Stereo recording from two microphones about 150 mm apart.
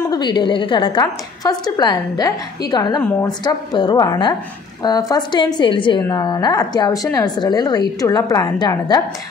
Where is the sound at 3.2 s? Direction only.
30° left (ahead or behind).